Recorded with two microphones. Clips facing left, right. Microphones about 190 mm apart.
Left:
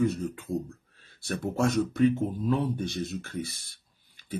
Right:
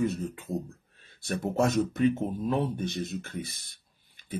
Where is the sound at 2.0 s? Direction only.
20° right (ahead or behind).